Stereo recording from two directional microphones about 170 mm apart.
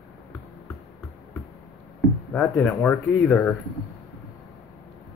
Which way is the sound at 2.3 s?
5° left (ahead or behind).